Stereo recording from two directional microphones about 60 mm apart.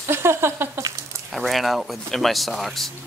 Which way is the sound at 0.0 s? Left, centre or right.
Right.